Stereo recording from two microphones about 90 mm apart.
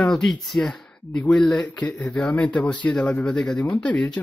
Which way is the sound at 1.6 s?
15° left (ahead or behind).